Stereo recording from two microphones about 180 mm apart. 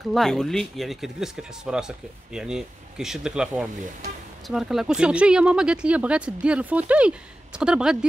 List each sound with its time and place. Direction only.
0.1 s speech: centre (ahead or behind)